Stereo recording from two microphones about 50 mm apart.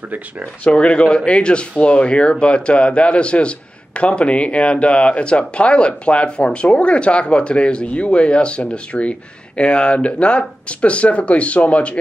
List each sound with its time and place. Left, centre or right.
0.7 s speech: left